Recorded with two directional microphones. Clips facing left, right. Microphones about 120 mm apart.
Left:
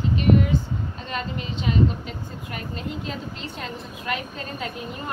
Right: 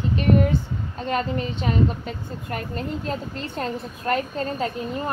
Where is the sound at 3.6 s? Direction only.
40° right (ahead or behind).